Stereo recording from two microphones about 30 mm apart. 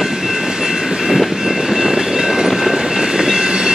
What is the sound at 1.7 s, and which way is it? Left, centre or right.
Vehicle, centre.